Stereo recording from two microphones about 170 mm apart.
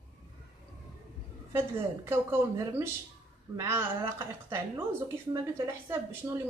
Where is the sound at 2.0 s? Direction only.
15° right (ahead or behind).